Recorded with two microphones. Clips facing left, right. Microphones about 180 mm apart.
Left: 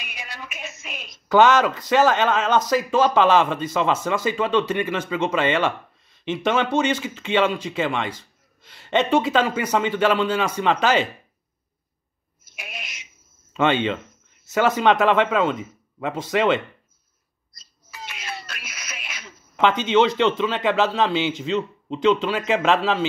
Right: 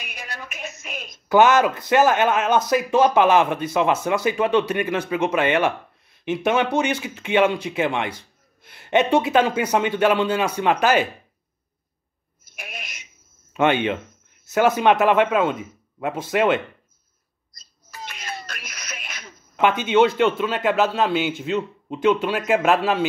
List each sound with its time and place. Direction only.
0.0 s female singing: 50° right (ahead or behind)
0.8 s a woman's voice: 45° right (ahead or behind)
1.3 s a man's voice: 10° right (ahead or behind)
13.5 s a man's voice: 10° right (ahead or behind)
18.6 s music: 5° left (ahead or behind)
19.8 s a man's voice: 10° right (ahead or behind)